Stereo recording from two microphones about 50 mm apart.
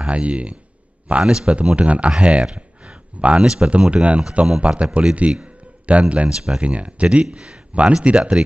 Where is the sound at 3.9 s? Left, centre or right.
Right.